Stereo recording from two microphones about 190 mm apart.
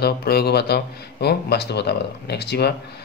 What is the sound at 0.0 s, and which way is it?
Speech, 55° left (ahead or behind).